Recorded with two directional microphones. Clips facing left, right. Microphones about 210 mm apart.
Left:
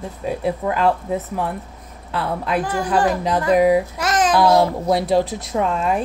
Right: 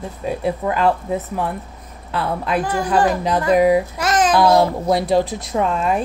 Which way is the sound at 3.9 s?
30° right (ahead or behind).